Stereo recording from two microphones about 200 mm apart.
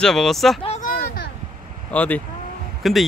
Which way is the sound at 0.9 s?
50° left (ahead or behind).